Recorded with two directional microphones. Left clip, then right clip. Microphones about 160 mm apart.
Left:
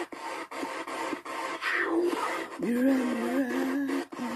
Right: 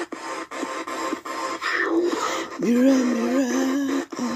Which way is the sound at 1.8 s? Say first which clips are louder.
Right 5 dB; 35° right (ahead or behind).